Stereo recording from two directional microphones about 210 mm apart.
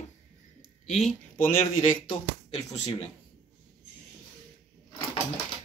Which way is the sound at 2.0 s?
20° left (ahead or behind).